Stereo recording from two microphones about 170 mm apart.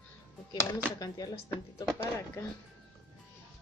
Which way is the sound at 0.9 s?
20° left (ahead or behind).